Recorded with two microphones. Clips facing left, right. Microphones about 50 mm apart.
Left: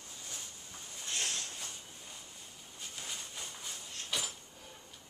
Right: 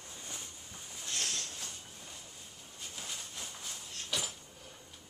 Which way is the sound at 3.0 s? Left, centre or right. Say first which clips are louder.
Even; centre.